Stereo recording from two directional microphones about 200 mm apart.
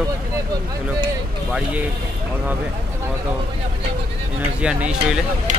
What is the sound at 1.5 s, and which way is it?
Speech, 5° right (ahead or behind).